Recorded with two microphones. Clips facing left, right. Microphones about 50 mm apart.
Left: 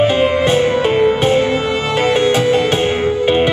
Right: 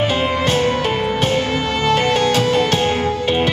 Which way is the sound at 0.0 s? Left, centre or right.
Left.